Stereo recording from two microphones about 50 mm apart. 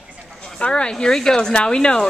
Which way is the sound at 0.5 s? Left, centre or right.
Centre.